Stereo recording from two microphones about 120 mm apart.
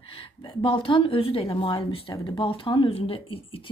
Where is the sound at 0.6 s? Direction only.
45° left (ahead or behind).